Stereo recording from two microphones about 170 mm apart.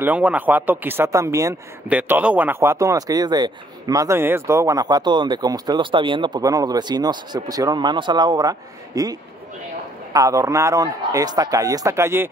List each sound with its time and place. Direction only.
0.0 s speech: 10° right (ahead or behind)